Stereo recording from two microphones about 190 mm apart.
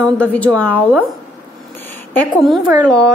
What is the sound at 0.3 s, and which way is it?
Speech, 5° left (ahead or behind).